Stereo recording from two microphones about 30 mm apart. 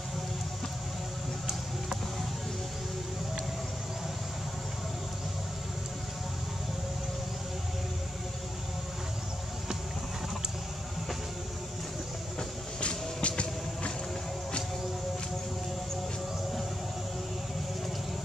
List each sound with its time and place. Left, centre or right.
12.8 s music: left